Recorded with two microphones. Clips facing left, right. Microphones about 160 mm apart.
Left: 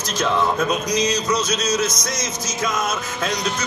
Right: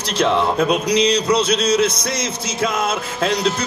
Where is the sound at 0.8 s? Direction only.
65° right (ahead or behind).